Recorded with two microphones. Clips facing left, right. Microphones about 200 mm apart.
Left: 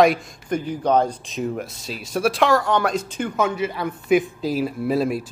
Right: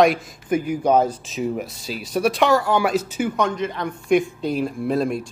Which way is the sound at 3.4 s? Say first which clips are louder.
Left 5 dB; 5° left (ahead or behind).